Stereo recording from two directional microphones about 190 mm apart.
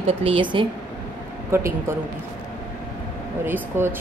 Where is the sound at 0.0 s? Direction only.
30° right (ahead or behind).